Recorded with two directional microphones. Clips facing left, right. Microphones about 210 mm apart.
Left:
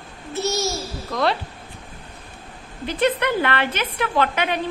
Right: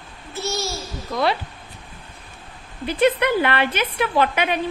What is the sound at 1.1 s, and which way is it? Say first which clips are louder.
Speech: even; 5° right (ahead or behind).